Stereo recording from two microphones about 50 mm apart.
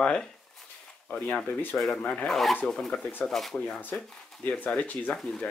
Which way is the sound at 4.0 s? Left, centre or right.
Left.